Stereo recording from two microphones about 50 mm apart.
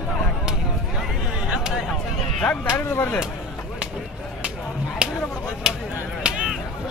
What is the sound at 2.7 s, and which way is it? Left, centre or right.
Speech, left.